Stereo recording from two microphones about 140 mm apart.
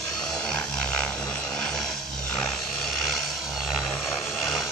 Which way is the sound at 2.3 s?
5° left (ahead or behind).